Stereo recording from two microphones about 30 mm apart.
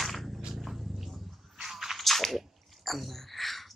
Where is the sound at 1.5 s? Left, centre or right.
Centre.